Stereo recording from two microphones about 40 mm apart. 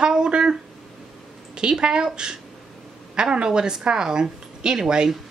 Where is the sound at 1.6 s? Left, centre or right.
Right.